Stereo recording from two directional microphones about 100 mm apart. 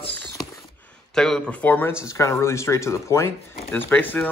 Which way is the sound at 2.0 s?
30° left (ahead or behind).